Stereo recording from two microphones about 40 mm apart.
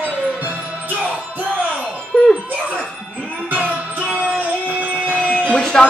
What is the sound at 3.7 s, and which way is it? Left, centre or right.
Music, centre.